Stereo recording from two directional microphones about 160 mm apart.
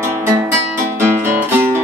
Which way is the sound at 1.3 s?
15° right (ahead or behind).